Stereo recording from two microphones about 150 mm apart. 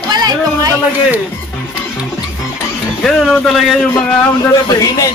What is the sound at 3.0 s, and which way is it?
Speech, 5° left (ahead or behind).